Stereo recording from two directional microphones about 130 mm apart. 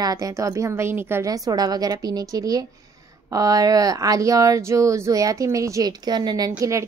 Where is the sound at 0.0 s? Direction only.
30° right (ahead or behind).